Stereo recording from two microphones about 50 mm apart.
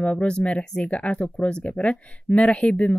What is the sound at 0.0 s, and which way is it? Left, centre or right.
Speech, left.